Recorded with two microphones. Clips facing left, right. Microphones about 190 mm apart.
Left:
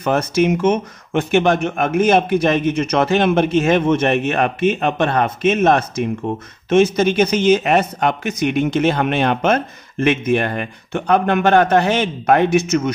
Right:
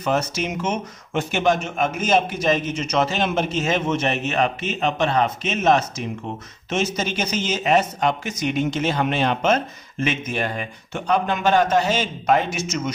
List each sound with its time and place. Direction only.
0.0 s speech: 55° left (ahead or behind)